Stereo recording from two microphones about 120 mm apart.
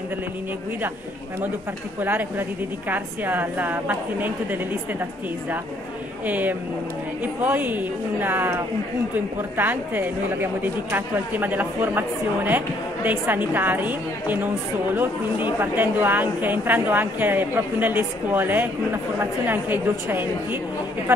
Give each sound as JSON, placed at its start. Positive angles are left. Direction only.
{"t": 2.0, "sound": "a woman's voice", "side_deg": -15}
{"t": 6.2, "sound": "a woman's voice", "side_deg": -15}
{"t": 15.6, "sound": "a woman's voice", "side_deg": -15}